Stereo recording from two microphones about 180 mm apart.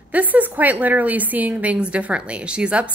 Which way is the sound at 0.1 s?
10° right (ahead or behind).